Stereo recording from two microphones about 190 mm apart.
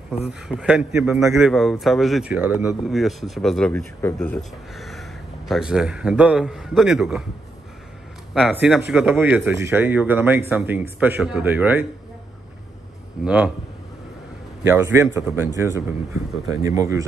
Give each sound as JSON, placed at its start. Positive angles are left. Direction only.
{"t": 0.3, "sound": "speech", "side_deg": -5}
{"t": 8.4, "sound": "speech", "side_deg": -5}
{"t": 13.2, "sound": "speech", "side_deg": -5}
{"t": 14.6, "sound": "speech", "side_deg": -15}